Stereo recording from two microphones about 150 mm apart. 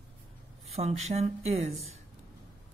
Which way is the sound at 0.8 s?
45° right (ahead or behind).